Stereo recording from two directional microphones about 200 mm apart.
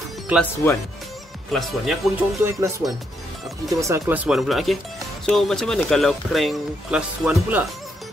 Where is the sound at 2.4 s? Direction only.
15° right (ahead or behind).